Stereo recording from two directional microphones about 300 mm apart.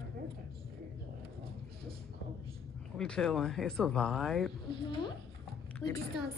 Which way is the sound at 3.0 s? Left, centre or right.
Centre.